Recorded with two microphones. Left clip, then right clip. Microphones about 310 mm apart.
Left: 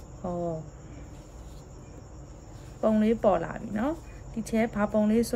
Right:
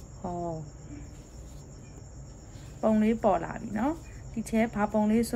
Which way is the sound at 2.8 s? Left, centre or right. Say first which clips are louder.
Left 1 dB; centre.